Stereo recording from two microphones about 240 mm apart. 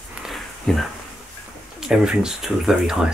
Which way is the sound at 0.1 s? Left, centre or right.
Centre.